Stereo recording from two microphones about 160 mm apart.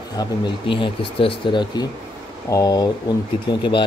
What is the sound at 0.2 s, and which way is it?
Speech, 30° left (ahead or behind).